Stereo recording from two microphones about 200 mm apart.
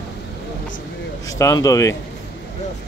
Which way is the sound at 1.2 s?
15° left (ahead or behind).